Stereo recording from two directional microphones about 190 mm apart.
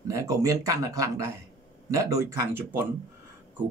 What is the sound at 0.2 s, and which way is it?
Speech, 15° right (ahead or behind).